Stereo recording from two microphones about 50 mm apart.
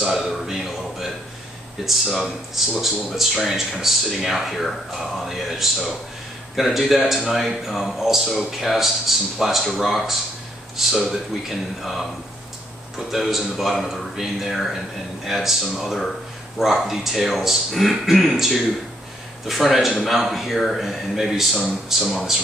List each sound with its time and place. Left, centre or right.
0.1 s a sound: centre
2.8 s speech: centre
13.1 s speech: centre